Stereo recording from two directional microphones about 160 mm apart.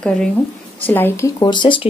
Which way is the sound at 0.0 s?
5° left (ahead or behind).